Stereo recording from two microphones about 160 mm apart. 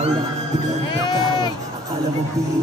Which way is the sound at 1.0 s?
25° left (ahead or behind).